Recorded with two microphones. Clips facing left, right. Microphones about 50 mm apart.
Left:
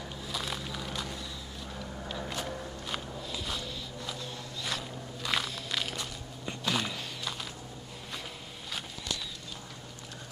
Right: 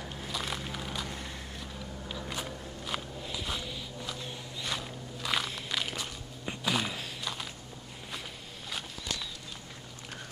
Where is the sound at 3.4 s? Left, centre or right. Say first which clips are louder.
Even; centre.